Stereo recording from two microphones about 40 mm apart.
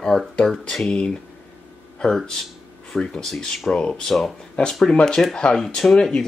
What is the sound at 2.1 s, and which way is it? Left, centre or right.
Speech, centre.